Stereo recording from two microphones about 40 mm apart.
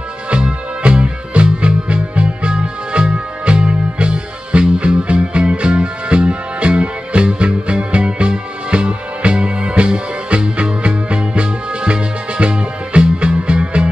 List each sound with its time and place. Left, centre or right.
0.3 s music: right